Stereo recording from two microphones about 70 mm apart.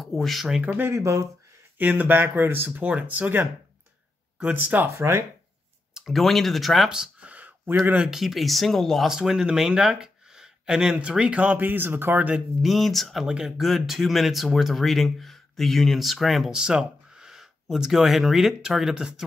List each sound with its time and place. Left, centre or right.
0.0 s speech: centre
0.6 s speech: right
0.8 s speech: right
1.8 s speech: right
4.8 s speech: right
5.9 s speech: centre; by 8.1 s right
8.1 s speech: centre
9.1 s speech: centre; by 12.2 s right
12.2 s speech: centre
12.6 s speech: centre